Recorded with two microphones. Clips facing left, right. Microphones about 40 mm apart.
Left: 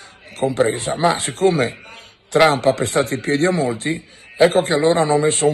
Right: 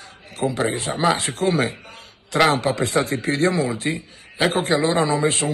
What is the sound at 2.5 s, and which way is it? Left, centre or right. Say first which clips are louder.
Speech: left 3 dB; left.